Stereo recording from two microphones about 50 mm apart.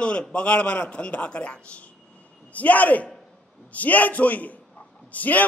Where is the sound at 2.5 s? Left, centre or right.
Left.